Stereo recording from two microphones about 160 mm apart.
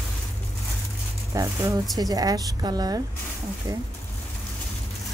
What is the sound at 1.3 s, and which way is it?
Speech, 20° right (ahead or behind).